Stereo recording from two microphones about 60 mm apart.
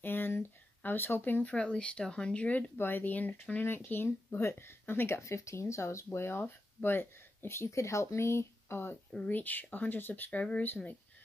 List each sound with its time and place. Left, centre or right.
0.0 s a sound: left
1.4 s speech: centre
2.8 s speech: left
4.4 s speech: left
6.1 s speech: left
7.7 s speech: left
9.3 s speech: left